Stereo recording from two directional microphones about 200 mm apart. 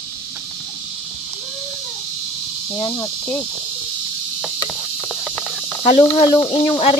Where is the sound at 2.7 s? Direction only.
20° left (ahead or behind).